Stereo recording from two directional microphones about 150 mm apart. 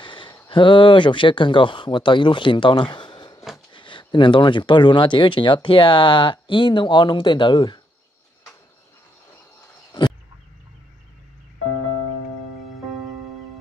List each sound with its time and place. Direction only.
0.0 s speech: 35° left (ahead or behind)